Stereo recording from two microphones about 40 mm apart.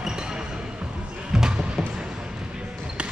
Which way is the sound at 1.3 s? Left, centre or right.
Centre.